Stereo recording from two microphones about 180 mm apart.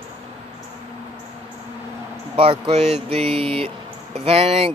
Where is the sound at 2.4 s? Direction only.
35° right (ahead or behind).